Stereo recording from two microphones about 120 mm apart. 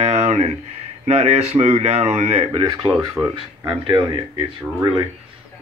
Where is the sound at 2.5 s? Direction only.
30° right (ahead or behind).